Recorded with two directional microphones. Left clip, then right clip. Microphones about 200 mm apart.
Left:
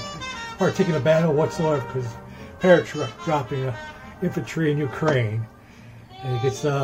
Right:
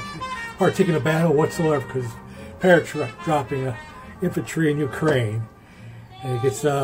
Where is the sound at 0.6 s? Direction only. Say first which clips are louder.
Right 2 dB; 15° right (ahead or behind).